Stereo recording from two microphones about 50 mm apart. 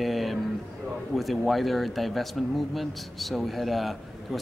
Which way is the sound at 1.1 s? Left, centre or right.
Centre.